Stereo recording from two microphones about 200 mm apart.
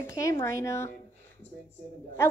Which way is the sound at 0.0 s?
15° left (ahead or behind).